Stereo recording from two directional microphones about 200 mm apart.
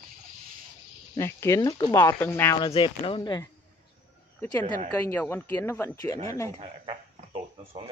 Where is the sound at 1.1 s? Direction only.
15° left (ahead or behind).